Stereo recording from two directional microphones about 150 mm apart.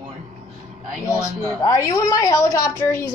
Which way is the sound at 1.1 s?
20° left (ahead or behind).